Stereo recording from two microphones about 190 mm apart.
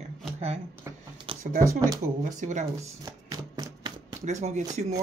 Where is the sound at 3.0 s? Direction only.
20° right (ahead or behind).